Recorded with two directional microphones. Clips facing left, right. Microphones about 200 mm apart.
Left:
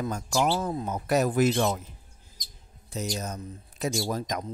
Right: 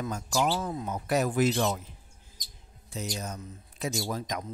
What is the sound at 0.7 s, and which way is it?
Speech, 40° left (ahead or behind).